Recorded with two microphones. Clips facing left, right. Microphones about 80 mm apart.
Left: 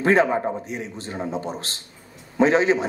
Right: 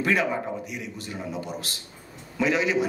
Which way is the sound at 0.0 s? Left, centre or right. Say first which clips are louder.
Left 6 dB; left.